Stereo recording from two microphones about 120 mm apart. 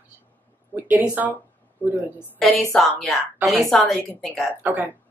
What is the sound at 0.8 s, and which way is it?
Speech, 15° right (ahead or behind).